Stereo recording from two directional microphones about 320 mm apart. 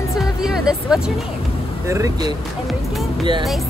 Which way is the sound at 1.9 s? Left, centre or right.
Centre.